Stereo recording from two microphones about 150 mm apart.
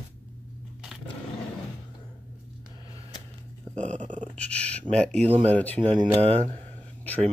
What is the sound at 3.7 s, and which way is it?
Dog, 55° right (ahead or behind).